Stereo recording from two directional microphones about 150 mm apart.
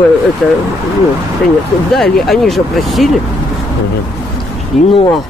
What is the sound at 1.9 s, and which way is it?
Speech, centre (ahead or behind).